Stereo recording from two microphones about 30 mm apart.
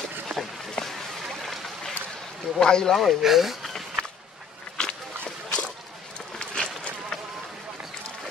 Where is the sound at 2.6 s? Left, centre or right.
Left.